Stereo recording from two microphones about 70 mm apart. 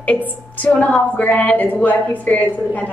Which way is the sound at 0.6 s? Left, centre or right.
Left.